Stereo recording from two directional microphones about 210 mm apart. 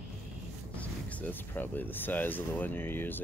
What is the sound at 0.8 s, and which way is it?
Speech, 5° left (ahead or behind).